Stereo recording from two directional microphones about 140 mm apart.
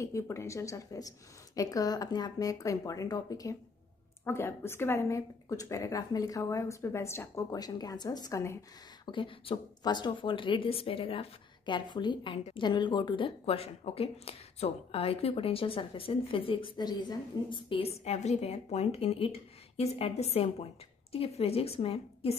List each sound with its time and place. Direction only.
0.0 s speech: 20° left (ahead or behind)
9.0 s a woman's voice: 35° left (ahead or behind)